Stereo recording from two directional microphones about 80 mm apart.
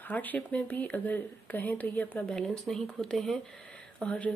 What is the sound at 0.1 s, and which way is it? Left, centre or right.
Speech, left.